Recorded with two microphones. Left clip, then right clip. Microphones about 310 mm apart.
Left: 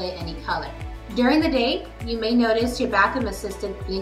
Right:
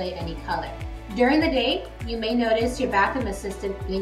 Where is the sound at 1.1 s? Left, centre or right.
Centre.